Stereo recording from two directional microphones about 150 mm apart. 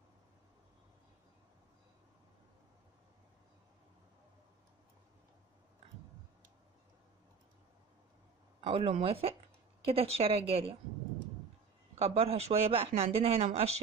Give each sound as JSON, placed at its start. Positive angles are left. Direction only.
{"t": 8.5, "sound": "a man's voice", "side_deg": -35}
{"t": 11.9, "sound": "a man's voice", "side_deg": -40}